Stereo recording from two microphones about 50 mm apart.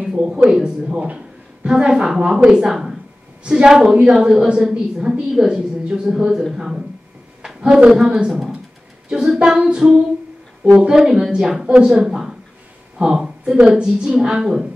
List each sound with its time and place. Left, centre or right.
0.0 s a woman's voice: centre
0.9 s a sound: right
1.7 s a woman's voice: centre
7.4 s a sound: centre
8.0 s a woman's voice: centre
10.6 s speech: right
10.9 s a woman's voice: centre